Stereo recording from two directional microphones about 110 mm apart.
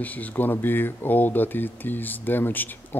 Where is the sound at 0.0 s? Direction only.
15° left (ahead or behind).